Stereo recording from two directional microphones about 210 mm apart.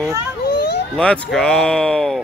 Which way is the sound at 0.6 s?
55° left (ahead or behind).